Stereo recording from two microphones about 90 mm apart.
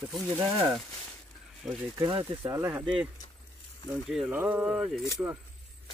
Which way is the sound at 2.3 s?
25° right (ahead or behind).